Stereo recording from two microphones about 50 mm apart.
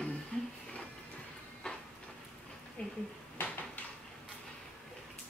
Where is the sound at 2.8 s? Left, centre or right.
Centre.